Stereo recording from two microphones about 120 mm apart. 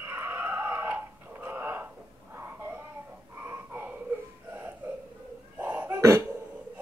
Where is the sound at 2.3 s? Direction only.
15° right (ahead or behind).